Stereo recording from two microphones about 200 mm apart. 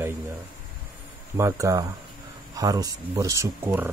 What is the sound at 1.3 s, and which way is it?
Speech, 15° right (ahead or behind).